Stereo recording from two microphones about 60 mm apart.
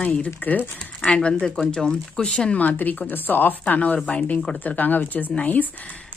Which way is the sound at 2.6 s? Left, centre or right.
Left.